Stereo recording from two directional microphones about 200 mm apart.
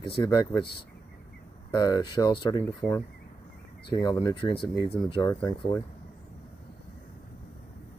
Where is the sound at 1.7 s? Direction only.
20° left (ahead or behind).